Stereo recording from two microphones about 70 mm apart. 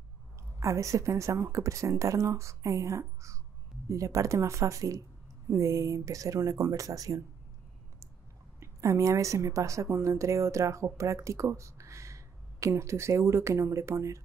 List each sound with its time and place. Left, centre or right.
0.6 s speech: right
8.5 s a woman's voice: right